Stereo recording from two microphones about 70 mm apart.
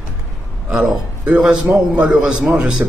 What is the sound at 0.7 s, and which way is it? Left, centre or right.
A man's voice, centre.